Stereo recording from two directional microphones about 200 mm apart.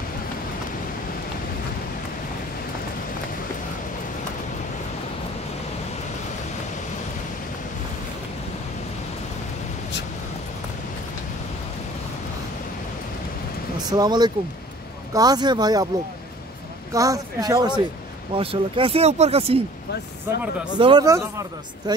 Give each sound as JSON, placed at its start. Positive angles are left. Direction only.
{"t": 13.8, "sound": "speech", "side_deg": -20}
{"t": 16.9, "sound": "speech", "side_deg": -15}
{"t": 20.8, "sound": "speech", "side_deg": -20}